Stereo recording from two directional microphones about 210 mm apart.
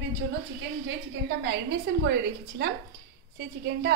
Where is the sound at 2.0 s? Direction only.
55° right (ahead or behind).